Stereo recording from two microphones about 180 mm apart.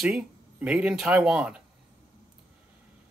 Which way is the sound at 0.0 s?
5° right (ahead or behind).